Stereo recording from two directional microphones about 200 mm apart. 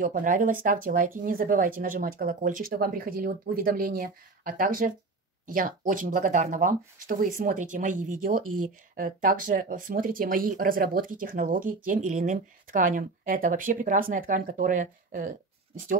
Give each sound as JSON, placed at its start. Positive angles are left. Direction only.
{"t": 0.0, "sound": "speech", "side_deg": -40}